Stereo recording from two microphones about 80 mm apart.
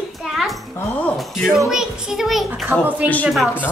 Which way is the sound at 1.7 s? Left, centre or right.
Centre.